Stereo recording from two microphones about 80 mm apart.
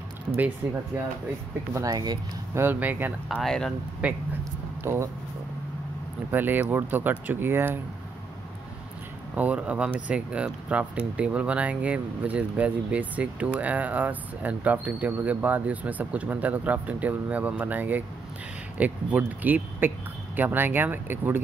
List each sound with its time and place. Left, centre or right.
0.3 s speech: centre
1.9 s speech: right
2.5 s speech: right
3.4 s speech: centre
4.0 s speech: centre
4.8 s speech: right
6.3 s speech: right
9.3 s speech: centre